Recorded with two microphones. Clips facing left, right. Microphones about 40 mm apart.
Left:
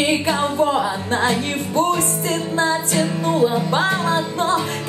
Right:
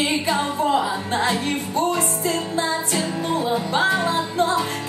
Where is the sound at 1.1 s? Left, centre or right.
Left.